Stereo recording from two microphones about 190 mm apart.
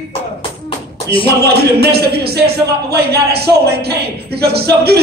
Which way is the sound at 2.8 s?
55° right (ahead or behind).